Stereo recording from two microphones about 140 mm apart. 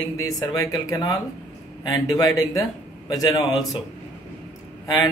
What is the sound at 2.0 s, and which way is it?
Speech, 25° left (ahead or behind).